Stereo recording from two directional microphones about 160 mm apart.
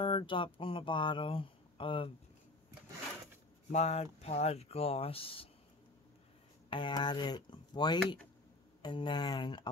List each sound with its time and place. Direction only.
0.0 s speech: 30° left (ahead or behind)
3.7 s speech: 40° left (ahead or behind)
6.7 s speech: 30° left (ahead or behind)